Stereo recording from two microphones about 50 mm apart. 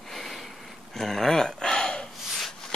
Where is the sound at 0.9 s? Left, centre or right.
Centre.